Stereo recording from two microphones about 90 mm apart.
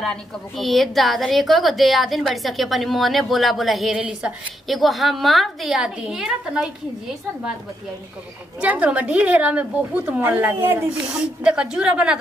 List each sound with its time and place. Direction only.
0.0 s a woman's voice: 5° left (ahead or behind)
8.5 s a woman's voice: 15° right (ahead or behind)
11.4 s a woman's voice: 10° right (ahead or behind)